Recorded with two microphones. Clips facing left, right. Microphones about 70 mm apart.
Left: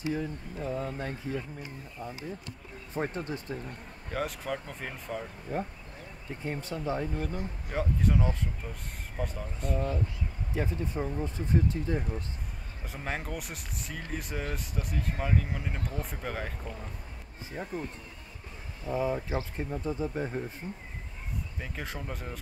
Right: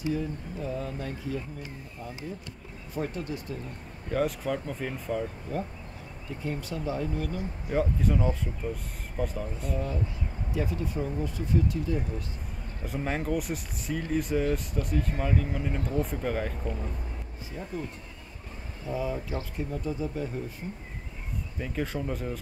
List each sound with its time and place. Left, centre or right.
0.1 s speech: left
2.9 s speech: left
4.1 s speech: centre
5.5 s speech: left
7.7 s speech: centre
10.5 s speech: left
12.8 s speech: centre
17.6 s speech: left
18.9 s speech: left
21.5 s speech: centre